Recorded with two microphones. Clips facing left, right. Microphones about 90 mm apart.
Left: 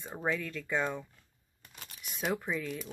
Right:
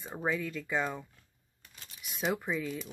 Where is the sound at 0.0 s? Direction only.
5° right (ahead or behind).